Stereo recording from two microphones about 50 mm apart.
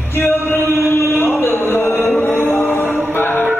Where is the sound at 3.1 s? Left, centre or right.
Left.